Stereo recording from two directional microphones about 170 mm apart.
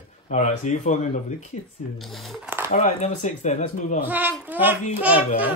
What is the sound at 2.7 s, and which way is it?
Speech, 45° left (ahead or behind).